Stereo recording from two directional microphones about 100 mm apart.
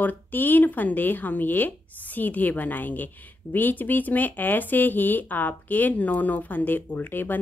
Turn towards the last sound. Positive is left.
turn(degrees=20)  # may be behind; listen again after turning